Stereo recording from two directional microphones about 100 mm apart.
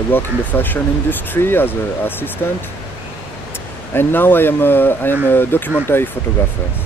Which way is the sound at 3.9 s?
20° left (ahead or behind).